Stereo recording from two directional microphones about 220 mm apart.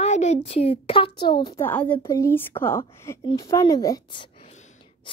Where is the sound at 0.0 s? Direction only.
30° left (ahead or behind).